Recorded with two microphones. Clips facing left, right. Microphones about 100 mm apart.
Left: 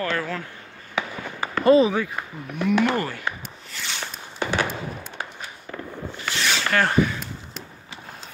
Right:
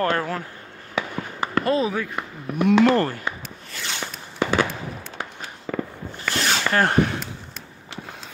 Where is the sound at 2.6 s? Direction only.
85° right.